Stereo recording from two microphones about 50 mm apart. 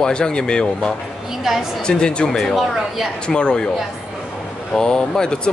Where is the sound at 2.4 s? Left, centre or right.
Centre.